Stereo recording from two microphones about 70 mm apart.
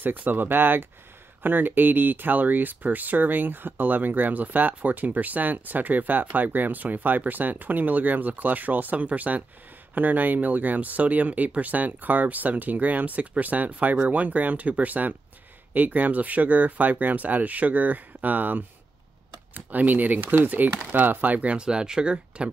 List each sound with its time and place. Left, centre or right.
0.0 s speech: right